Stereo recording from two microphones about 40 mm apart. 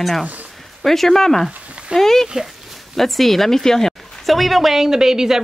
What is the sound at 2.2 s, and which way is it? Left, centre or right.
Speech, centre.